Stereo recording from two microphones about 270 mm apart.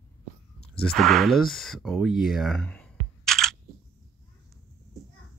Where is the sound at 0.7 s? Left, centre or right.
Centre.